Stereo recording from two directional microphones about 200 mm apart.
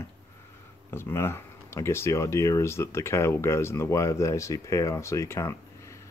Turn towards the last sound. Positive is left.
turn(degrees=15)  # may be behind; listen again after turning